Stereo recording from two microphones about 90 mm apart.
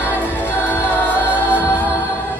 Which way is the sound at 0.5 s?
20° left (ahead or behind).